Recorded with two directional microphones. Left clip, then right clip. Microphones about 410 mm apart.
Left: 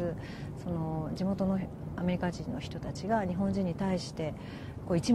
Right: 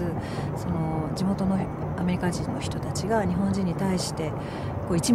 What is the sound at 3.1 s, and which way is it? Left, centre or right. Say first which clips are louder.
Speech: right 5 dB; left.